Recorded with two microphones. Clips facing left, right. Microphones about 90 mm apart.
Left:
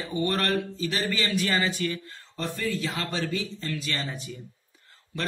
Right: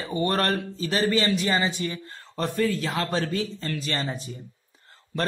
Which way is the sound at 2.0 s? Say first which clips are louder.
Right 4 dB; 45° right (ahead or behind).